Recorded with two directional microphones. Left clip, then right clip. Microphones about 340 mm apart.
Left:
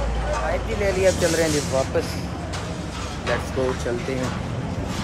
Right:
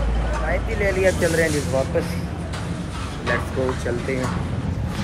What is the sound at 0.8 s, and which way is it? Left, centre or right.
Speech, centre.